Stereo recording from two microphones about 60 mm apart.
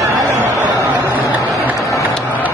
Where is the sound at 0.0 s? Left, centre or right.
Right.